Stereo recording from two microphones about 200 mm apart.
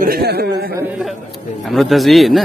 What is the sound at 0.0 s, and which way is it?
Speech, 50° right (ahead or behind).